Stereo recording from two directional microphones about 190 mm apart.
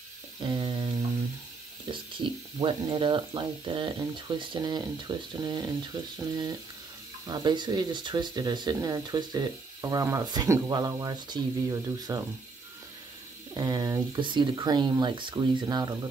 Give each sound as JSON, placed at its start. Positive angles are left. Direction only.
{"t": 0.4, "sound": "a sound", "side_deg": -20}
{"t": 1.9, "sound": "speech", "side_deg": -25}
{"t": 7.2, "sound": "speech", "side_deg": -25}
{"t": 13.6, "sound": "speech", "side_deg": -20}